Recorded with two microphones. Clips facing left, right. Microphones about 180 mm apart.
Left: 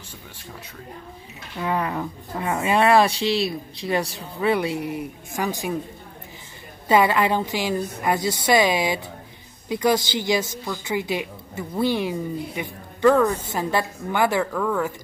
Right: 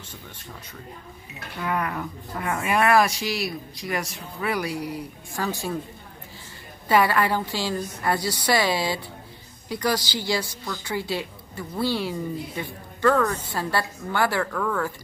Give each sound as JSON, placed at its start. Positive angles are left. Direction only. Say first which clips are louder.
{"t": 1.6, "sound": "a woman's voice", "louder": "left 3 dB", "side_deg": 25}
{"t": 6.9, "sound": "a woman's voice", "louder": "left 2 dB", "side_deg": 20}